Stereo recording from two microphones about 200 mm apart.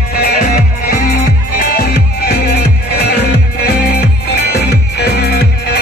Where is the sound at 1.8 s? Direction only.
55° left (ahead or behind).